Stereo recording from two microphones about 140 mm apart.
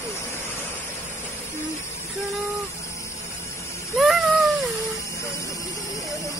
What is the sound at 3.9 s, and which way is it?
Cat, centre (ahead or behind).